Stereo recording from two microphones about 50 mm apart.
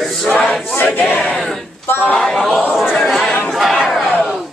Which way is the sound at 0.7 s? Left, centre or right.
Left.